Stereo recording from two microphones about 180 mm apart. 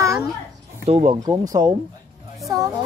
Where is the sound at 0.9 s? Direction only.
35° right (ahead or behind).